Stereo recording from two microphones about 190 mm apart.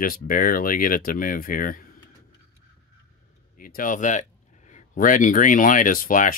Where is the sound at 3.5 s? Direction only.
45° left (ahead or behind).